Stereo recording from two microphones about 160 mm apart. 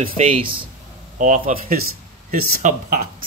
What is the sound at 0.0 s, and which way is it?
Speech, 35° right (ahead or behind).